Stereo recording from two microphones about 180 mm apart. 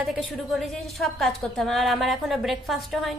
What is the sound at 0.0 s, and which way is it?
A woman's voice, centre (ahead or behind).